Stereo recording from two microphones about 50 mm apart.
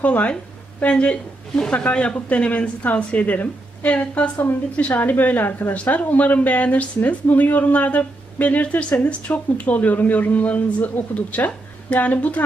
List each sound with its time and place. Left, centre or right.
0.3 s a woman's voice: left
4.9 s a woman's voice: left